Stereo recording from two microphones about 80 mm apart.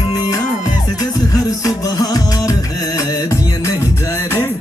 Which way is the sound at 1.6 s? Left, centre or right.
Left.